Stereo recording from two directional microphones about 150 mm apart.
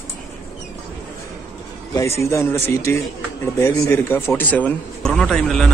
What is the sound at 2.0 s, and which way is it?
Speech, 20° left (ahead or behind).